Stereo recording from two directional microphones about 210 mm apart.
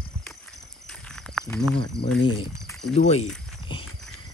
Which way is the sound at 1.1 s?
Centre (ahead or behind).